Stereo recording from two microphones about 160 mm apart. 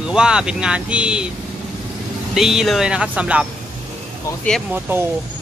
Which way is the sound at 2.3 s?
Centre (ahead or behind).